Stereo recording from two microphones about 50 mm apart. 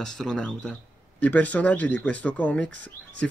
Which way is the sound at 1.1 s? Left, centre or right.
Left.